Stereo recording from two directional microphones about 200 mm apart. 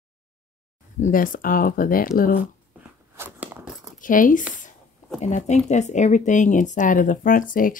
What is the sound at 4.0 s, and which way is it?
Speech, 40° left (ahead or behind).